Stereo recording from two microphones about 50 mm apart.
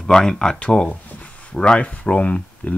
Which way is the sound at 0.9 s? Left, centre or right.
Left.